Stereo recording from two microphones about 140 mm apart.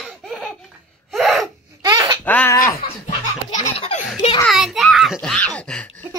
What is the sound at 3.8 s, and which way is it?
Belly laugh, 50° left (ahead or behind).